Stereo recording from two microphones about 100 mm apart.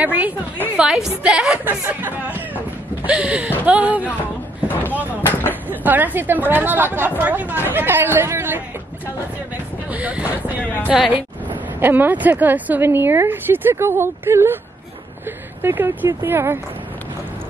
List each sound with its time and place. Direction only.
0.0 s speech: 15° right (ahead or behind)
4.6 s a sound: 20° left (ahead or behind)
5.7 s speech: 15° right (ahead or behind)
9.8 s speech: 15° right (ahead or behind)
10.6 s a woman's voice: 15° left (ahead or behind)
10.9 s speech: 15° right (ahead or behind)
15.6 s speech: 20° right (ahead or behind)